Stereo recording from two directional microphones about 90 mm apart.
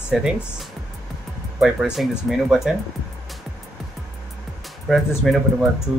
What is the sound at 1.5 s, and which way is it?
Speech, 5° right (ahead or behind).